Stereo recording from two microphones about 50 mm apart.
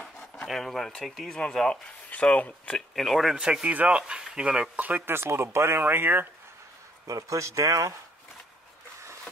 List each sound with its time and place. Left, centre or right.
0.0 s a sound: centre
0.5 s speech: centre
1.3 s speech: centre
2.1 s a sound: left
2.4 s speech: left
3.0 s speech: centre
3.3 s speech: centre
3.7 s speech: right
4.1 s speech: centre
4.7 s speech: right
5.0 s speech: right
7.2 s speech: right